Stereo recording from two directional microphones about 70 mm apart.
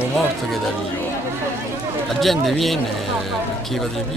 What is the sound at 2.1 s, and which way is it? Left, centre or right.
Speech, centre.